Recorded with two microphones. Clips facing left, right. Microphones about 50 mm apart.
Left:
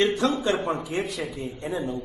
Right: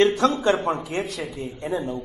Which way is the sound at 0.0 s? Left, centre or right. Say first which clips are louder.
Right 4 dB; centre.